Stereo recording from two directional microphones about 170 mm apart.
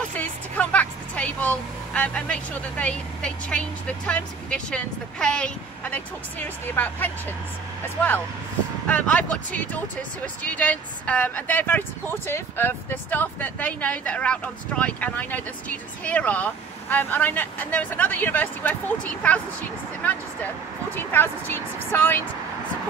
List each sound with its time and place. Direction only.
0.1 s speech: 10° left (ahead or behind)
8.8 s speech: 10° left (ahead or behind)
20.9 s speech: 10° left (ahead or behind)